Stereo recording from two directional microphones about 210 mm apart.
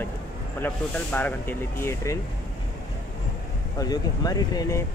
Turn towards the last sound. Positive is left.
turn(degrees=15)  # may be behind; listen again after turning